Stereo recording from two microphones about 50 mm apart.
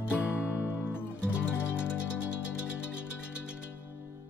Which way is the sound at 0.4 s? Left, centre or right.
Left.